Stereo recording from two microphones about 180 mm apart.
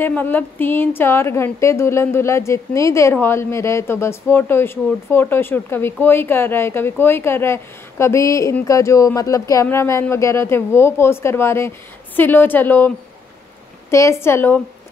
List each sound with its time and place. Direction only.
0.0 s a woman's voice: 10° left (ahead or behind)